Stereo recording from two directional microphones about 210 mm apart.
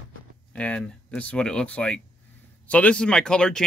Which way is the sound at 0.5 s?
5° left (ahead or behind).